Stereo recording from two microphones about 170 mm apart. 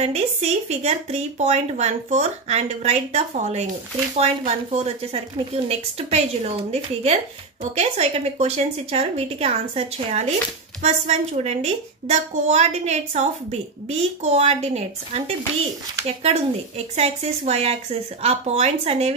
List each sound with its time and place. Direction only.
0.0 s a woman's voice: 40° right (ahead or behind)